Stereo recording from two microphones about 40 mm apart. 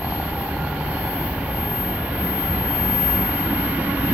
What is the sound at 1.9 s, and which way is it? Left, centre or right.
Vehicle, right.